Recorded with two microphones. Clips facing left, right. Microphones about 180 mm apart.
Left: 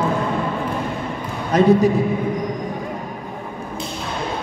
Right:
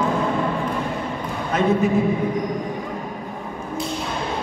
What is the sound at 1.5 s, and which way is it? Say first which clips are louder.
Speech: left 5 dB; 35° left (ahead or behind).